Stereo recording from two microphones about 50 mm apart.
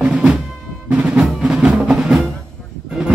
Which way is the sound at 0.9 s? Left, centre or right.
Right.